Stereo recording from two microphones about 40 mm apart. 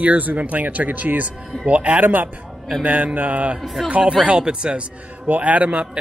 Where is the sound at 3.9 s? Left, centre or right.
Right.